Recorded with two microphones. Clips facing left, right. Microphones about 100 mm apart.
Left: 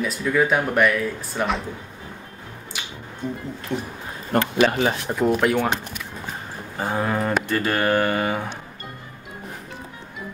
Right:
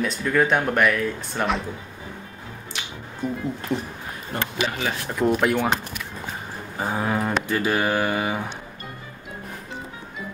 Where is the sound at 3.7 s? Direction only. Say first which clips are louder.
Even; 5° right (ahead or behind).